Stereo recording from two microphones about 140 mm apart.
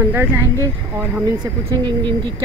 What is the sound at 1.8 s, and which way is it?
Speech, 35° right (ahead or behind).